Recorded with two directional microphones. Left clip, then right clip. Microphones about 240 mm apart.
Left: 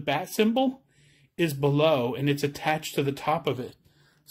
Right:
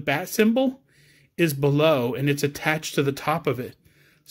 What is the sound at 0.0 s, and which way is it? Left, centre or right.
Speech, centre.